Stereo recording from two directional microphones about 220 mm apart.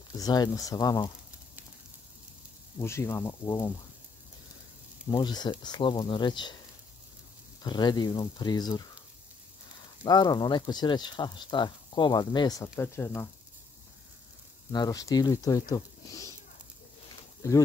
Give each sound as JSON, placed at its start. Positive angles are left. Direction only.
{"t": 0.2, "sound": "speech", "side_deg": 15}
{"t": 2.8, "sound": "speech", "side_deg": 10}
{"t": 5.1, "sound": "speech", "side_deg": 20}
{"t": 7.6, "sound": "speech", "side_deg": 20}
{"t": 10.0, "sound": "speech", "side_deg": 20}
{"t": 14.7, "sound": "speech", "side_deg": 15}